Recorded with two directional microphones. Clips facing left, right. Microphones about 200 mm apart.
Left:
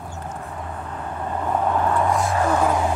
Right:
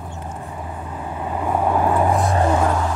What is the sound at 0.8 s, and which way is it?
Vehicle, 10° right (ahead or behind).